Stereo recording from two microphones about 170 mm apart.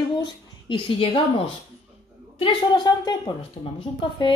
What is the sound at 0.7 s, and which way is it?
A woman's voice, 35° left (ahead or behind).